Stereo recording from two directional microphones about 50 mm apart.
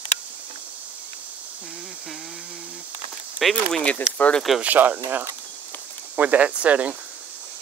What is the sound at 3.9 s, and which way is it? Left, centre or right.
Speech, left.